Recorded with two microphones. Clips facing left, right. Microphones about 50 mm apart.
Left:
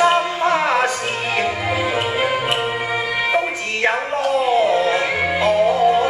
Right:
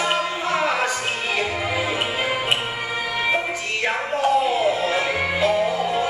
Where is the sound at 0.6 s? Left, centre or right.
Left.